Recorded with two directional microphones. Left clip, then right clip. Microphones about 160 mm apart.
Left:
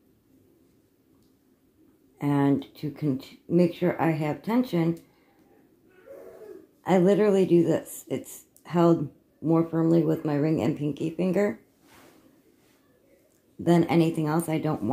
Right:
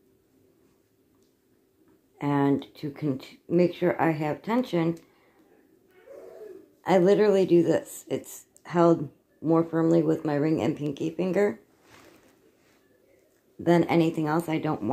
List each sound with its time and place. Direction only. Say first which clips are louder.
2.1 s speech: even; 10° left (ahead or behind)
6.8 s speech: right 1 dB; 10° left (ahead or behind)
13.7 s speech: even; 10° left (ahead or behind)